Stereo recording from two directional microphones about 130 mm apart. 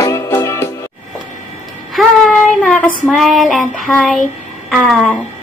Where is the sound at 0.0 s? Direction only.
25° left (ahead or behind).